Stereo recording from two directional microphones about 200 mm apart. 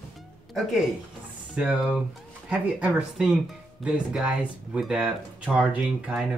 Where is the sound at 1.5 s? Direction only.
5° right (ahead or behind).